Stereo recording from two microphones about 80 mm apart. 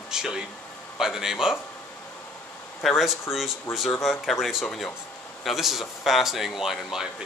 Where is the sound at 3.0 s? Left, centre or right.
Centre.